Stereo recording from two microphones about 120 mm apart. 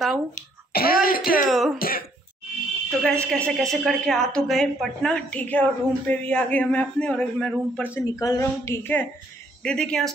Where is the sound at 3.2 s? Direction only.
10° left (ahead or behind).